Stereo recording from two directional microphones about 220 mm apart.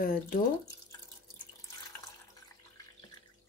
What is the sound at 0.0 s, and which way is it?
Speech, 40° left (ahead or behind).